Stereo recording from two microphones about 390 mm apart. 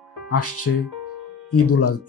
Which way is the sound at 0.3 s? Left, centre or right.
Left.